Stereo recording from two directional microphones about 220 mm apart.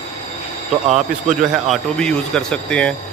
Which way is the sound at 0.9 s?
35° right (ahead or behind).